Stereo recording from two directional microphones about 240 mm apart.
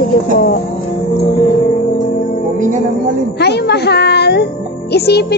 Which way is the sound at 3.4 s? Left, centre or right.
Left.